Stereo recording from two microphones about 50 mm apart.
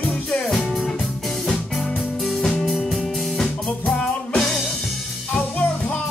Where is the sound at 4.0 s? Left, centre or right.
Centre.